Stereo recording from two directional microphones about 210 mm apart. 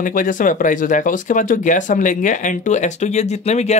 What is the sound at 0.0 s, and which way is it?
Speech, 40° left (ahead or behind).